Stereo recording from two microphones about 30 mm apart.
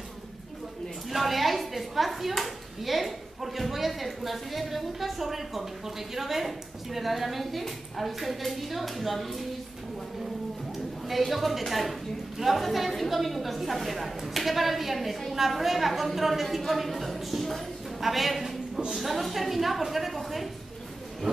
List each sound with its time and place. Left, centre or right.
1.1 s a sound: centre
2.4 s speech: centre
11.1 s a woman's voice: centre